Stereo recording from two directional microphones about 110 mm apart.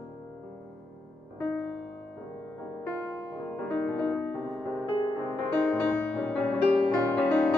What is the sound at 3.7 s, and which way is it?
Music, 10° left (ahead or behind).